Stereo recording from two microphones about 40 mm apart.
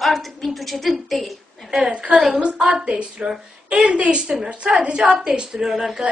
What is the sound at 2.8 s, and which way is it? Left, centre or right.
A woman's voice, right.